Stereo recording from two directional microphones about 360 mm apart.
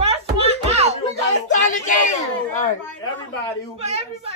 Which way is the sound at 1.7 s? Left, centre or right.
Left.